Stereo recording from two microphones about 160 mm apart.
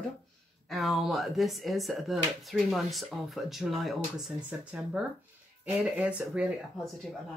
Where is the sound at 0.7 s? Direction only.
Centre (ahead or behind).